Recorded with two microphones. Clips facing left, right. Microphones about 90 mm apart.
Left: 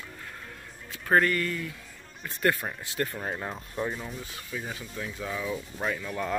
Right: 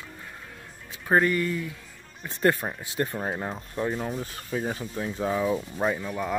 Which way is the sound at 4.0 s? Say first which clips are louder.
Right 7 dB; 40° right (ahead or behind).